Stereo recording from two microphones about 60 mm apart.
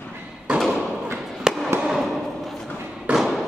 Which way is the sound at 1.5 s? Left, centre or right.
Centre.